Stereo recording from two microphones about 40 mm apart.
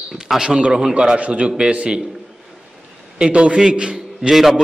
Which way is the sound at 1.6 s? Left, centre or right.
Right.